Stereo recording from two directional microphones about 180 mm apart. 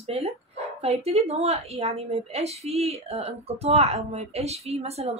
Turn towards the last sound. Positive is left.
turn(degrees=-35)  # may be behind; listen again after turning